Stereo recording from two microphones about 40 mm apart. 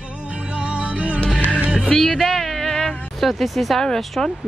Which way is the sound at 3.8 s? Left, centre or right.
Centre.